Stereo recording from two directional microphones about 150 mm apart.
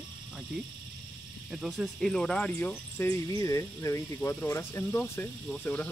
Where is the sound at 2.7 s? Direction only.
15° left (ahead or behind).